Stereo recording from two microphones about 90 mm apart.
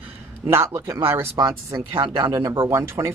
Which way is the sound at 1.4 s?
40° right (ahead or behind).